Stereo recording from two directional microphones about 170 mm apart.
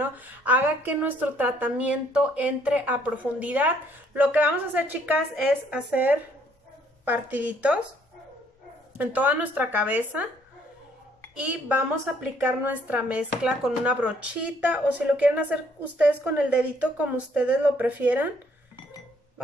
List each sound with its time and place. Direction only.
0.0 s a woman's voice: 10° right (ahead or behind)
8.9 s a woman's voice: 10° right (ahead or behind)
11.3 s a woman's voice: 5° right (ahead or behind)